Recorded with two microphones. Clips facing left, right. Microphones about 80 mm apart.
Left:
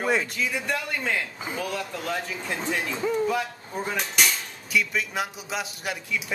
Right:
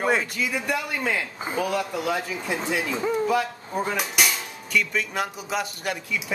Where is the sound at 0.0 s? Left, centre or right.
Centre.